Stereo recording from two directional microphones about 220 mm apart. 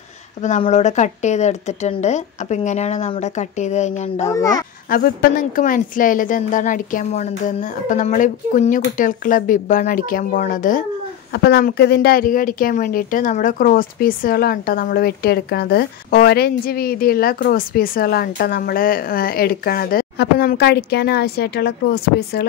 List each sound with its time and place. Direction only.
0.4 s a woman's voice: 30° left (ahead or behind)
4.3 s a child's voice: 15° left (ahead or behind)
4.8 s a woman's voice: 40° left (ahead or behind)
11.3 s speech: 50° left (ahead or behind)